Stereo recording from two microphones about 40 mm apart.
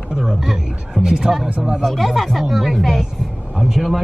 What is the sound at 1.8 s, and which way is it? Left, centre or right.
Speech, centre.